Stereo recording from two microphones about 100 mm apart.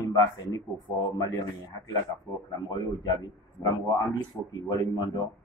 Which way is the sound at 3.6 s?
35° left (ahead or behind).